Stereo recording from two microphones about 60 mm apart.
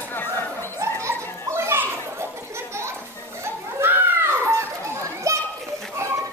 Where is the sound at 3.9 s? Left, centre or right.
Right.